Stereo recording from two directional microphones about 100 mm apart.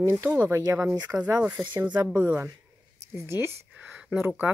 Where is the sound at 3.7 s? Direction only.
10° right (ahead or behind).